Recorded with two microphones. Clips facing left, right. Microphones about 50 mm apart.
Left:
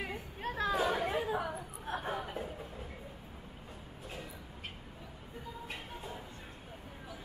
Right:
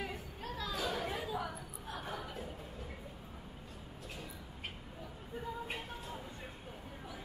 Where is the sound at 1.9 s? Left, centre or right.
Left.